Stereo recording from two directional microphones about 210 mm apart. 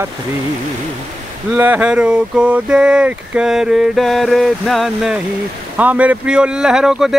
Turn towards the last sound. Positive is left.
turn(degrees=-5)  # may be behind; listen again after turning